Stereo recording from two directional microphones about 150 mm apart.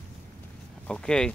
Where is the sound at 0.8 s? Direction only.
5° left (ahead or behind).